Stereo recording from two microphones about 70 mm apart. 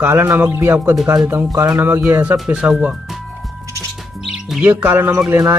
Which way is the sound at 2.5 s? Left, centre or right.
Centre.